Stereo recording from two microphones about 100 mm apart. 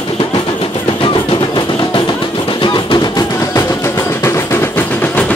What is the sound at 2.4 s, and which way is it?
Music, 55° left (ahead or behind).